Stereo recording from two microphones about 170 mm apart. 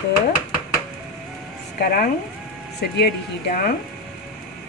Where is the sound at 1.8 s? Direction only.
60° left (ahead or behind).